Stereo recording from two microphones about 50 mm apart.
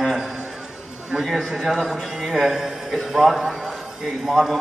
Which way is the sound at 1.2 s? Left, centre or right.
Centre.